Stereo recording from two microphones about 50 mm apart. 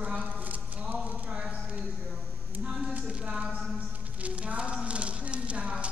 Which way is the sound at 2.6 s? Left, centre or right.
Right.